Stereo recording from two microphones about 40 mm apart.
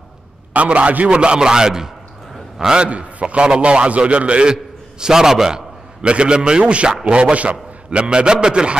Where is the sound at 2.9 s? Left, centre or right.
Right; by 5.6 s centre.